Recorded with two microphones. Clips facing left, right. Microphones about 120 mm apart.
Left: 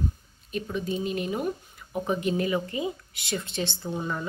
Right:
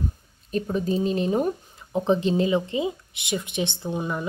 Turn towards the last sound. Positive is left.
turn(degrees=-15)  # may be behind; listen again after turning